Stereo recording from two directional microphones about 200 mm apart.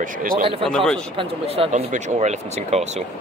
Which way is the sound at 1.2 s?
30° right (ahead or behind).